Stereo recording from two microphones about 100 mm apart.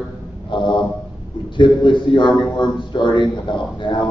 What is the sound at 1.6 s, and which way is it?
A man's voice, 55° left (ahead or behind).